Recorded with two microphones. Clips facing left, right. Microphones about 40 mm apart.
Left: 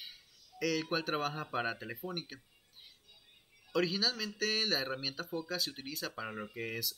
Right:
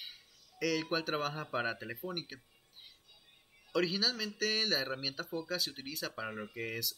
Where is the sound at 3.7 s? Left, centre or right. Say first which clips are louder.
Even; centre.